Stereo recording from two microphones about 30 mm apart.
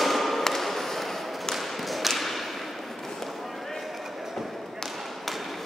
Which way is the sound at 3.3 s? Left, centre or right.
Centre.